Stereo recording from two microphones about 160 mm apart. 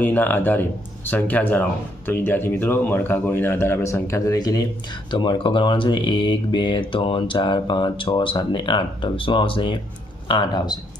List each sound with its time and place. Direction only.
0.0 s speech: 10° left (ahead or behind)